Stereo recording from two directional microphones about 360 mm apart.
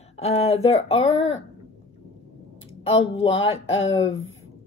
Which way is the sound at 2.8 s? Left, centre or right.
Centre.